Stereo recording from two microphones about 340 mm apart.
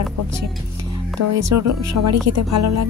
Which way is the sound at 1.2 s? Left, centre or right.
Right.